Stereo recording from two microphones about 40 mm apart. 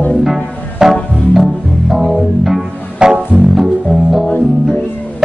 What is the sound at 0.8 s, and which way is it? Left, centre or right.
Music, centre.